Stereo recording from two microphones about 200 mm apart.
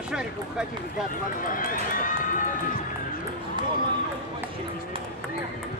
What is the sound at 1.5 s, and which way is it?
Speech, 45° left (ahead or behind).